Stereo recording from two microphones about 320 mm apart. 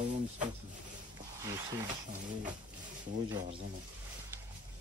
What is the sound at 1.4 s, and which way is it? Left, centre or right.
Speech, centre.